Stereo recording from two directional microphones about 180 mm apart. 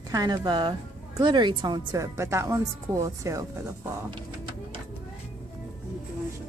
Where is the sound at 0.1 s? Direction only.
20° right (ahead or behind).